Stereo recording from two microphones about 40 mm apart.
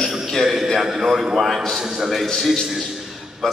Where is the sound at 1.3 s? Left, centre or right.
Centre.